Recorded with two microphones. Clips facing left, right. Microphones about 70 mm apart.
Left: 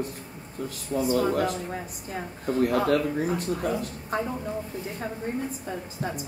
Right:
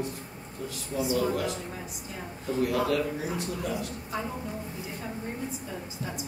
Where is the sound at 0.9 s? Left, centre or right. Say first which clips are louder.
Left 4 dB; left.